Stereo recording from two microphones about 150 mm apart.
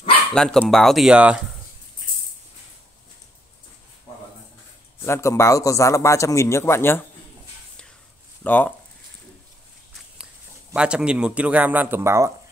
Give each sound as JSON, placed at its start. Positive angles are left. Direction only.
{"t": 0.3, "sound": "speech", "side_deg": 5}
{"t": 5.0, "sound": "a man's voice", "side_deg": 20}
{"t": 8.5, "sound": "speech", "side_deg": 10}
{"t": 10.7, "sound": "speech", "side_deg": -5}